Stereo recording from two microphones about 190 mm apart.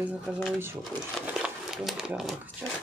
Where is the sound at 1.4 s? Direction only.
5° right (ahead or behind).